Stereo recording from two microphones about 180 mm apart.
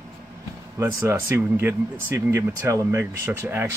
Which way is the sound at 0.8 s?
15° right (ahead or behind).